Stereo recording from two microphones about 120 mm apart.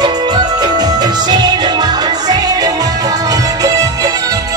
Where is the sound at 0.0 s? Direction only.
35° right (ahead or behind).